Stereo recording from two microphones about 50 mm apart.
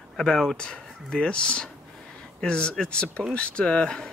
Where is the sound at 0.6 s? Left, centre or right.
Centre.